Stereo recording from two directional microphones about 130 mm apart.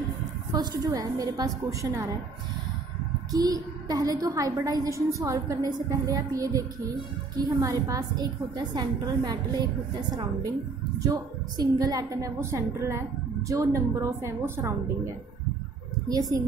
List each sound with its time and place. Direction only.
0.5 s a woman's voice: 30° right (ahead or behind)
3.3 s a woman's voice: 30° right (ahead or behind)
16.1 s a woman's voice: 30° right (ahead or behind)